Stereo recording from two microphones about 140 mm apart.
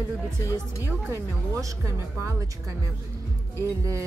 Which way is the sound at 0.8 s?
20° right (ahead or behind).